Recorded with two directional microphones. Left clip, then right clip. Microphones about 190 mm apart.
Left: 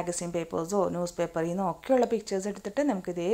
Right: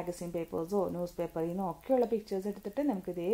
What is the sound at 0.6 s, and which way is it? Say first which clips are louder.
Speech: left 5 dB; 25° left (ahead or behind).